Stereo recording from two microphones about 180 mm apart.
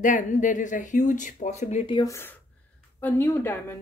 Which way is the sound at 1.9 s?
15° left (ahead or behind).